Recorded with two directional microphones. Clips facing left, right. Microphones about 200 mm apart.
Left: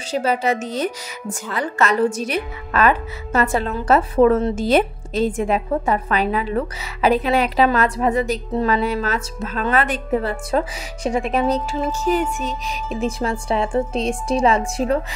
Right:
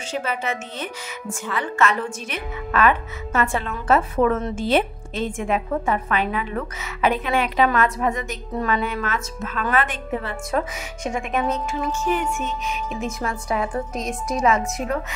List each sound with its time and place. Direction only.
0.1 s a woman's voice: 35° left (ahead or behind)